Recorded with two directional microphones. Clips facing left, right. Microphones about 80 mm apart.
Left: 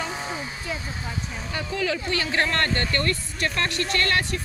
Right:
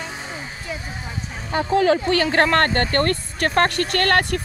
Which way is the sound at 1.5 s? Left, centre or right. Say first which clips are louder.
Right 10 dB; right.